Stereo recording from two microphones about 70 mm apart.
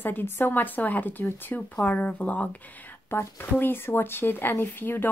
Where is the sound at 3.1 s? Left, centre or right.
Left.